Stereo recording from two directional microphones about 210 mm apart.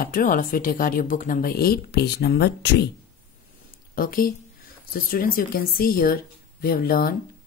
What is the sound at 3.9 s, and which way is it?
Speech, 45° left (ahead or behind).